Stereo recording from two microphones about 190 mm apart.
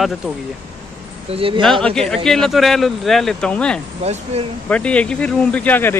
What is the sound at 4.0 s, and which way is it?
Speech, 35° right (ahead or behind).